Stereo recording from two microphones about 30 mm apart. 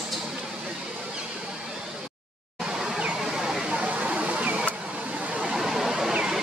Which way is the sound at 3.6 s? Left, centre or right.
Right.